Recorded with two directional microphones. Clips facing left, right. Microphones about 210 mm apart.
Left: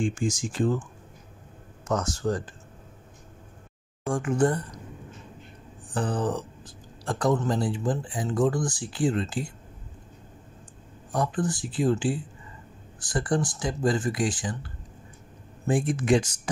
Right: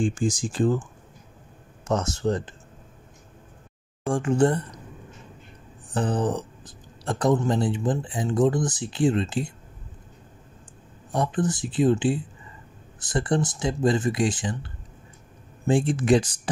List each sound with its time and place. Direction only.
0.0 s speech: 35° right (ahead or behind)
1.9 s speech: 25° right (ahead or behind)
4.0 s speech: 30° right (ahead or behind)
5.9 s speech: 20° right (ahead or behind)
11.1 s speech: 20° right (ahead or behind)